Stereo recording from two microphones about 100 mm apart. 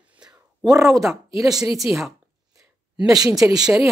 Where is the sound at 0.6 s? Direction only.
35° right (ahead or behind).